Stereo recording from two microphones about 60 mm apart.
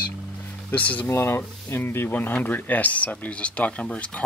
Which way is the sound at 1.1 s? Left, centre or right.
Left.